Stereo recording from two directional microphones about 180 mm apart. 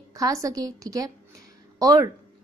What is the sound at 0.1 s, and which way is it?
A woman's voice, 20° right (ahead or behind).